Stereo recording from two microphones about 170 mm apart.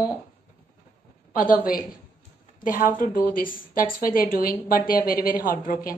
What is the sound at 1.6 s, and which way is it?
A woman's voice, 55° left (ahead or behind).